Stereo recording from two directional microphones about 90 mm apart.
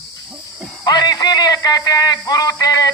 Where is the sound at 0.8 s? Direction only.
45° left (ahead or behind).